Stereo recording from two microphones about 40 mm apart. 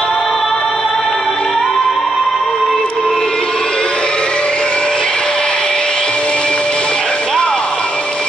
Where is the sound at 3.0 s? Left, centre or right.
Centre.